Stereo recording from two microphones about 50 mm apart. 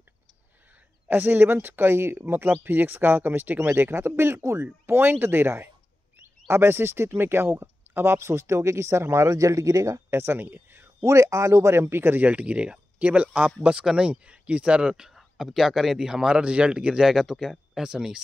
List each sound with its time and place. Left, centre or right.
1.1 s speech: right
6.1 s speech: right
10.1 s speech: right
11.1 s speech: right
12.2 s speech: right
17.0 s speech: centre